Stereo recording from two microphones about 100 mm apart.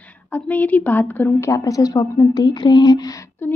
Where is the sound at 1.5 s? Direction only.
35° left (ahead or behind).